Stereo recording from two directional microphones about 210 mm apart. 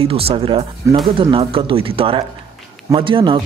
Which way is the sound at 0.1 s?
25° right (ahead or behind).